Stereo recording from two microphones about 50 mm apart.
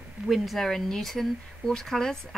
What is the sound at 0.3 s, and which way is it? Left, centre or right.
A woman's voice, centre.